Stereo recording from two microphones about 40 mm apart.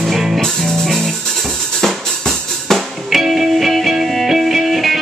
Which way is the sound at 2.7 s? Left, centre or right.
Centre.